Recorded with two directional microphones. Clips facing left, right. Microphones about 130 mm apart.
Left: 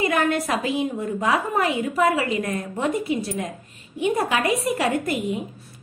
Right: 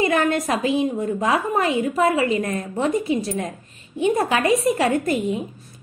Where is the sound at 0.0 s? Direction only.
25° right (ahead or behind).